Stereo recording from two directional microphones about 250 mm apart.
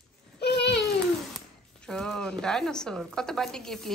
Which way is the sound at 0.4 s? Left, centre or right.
Left.